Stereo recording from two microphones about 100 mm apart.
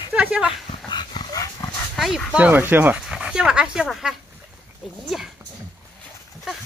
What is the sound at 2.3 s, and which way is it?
Speech, 15° right (ahead or behind).